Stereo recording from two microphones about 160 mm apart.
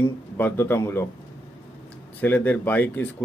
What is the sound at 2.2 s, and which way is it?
Speech, 10° left (ahead or behind).